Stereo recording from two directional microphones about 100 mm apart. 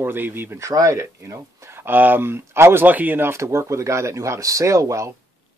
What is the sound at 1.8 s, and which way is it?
A man's voice, 20° right (ahead or behind).